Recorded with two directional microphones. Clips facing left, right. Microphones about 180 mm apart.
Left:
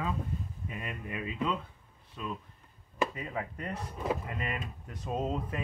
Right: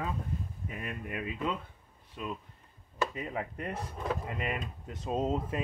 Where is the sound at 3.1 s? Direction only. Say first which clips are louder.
Right 1 dB; 20° right (ahead or behind).